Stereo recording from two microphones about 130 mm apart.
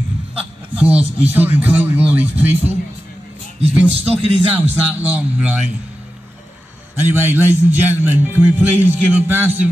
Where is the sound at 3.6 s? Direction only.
50° right (ahead or behind).